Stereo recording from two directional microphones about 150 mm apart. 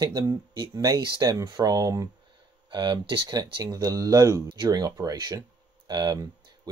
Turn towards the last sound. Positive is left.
turn(degrees=-25)  # may be behind; listen again after turning